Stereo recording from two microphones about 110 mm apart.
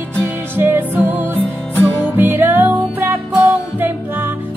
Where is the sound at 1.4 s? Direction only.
15° left (ahead or behind).